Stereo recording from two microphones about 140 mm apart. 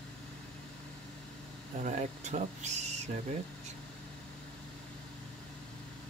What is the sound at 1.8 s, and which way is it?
Speech, 55° right (ahead or behind).